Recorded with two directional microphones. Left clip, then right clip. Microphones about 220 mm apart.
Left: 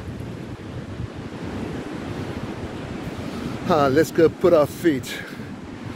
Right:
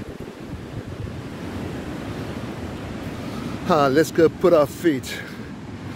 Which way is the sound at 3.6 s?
10° right (ahead or behind).